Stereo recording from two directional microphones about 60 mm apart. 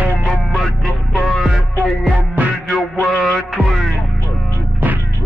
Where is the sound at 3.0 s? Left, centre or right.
Centre.